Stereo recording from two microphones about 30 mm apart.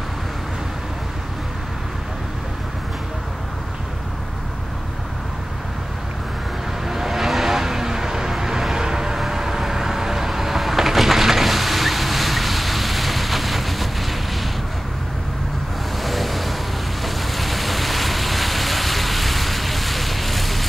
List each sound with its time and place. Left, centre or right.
6.9 s vehicle: centre
16.0 s waves: centre
17.0 s vehicle: centre